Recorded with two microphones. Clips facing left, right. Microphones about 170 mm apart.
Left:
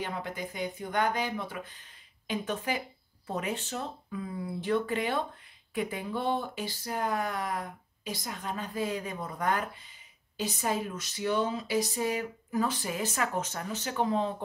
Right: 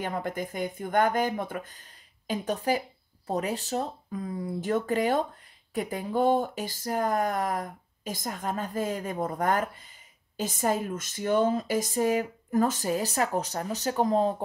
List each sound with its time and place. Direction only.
0.0 s speech: 50° right (ahead or behind)